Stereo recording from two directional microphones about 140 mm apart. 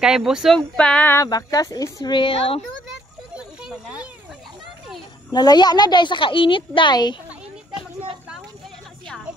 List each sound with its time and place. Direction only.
0.0 s speech: 5° right (ahead or behind)
0.6 s female singing: 10° left (ahead or behind)
1.2 s speech: 25° left (ahead or behind); by 2.6 s 40° left (ahead or behind)
3.3 s a sound: 5° right (ahead or behind)
5.3 s a woman's voice: 30° left (ahead or behind)